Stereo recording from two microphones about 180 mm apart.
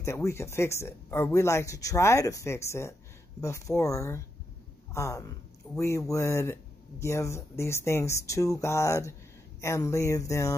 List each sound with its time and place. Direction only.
0.0 s speech: 15° left (ahead or behind)